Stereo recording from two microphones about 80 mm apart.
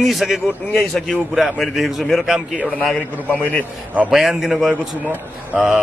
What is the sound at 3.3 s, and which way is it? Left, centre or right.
Speech, left.